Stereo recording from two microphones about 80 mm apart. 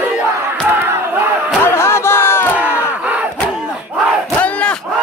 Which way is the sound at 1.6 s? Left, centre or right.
Left.